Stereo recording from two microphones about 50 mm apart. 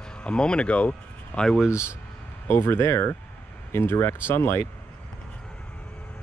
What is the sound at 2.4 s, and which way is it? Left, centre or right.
Speech, left.